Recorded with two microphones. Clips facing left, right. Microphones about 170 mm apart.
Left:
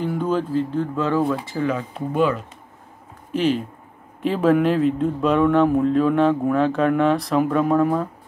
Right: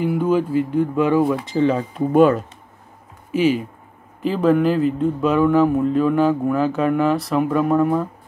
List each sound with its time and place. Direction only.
0.0 s speech: 10° right (ahead or behind)
2.1 s speech: 45° right (ahead or behind)
3.3 s a man's voice: 10° right (ahead or behind)